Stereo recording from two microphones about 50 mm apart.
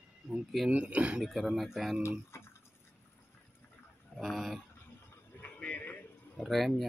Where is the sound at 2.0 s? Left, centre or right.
Left.